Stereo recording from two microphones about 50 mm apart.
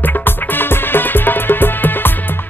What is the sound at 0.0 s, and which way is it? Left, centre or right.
Music, left.